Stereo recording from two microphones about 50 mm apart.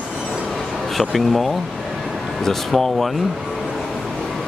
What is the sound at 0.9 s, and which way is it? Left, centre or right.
Speech, centre.